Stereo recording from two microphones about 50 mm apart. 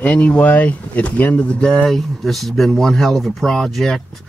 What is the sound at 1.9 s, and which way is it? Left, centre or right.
Speech, centre.